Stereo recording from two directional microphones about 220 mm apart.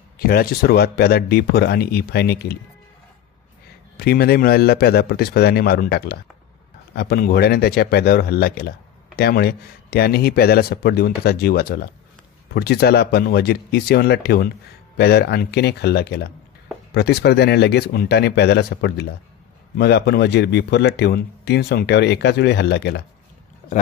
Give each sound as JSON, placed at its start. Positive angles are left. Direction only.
{"t": 0.2, "sound": "speech", "side_deg": 45}
{"t": 4.0, "sound": "speech", "side_deg": 45}